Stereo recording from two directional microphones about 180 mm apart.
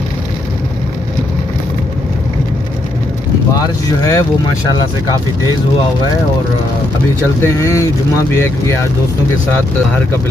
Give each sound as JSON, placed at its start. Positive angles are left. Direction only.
{"t": 3.5, "sound": "speech", "side_deg": 20}
{"t": 7.4, "sound": "speech", "side_deg": 15}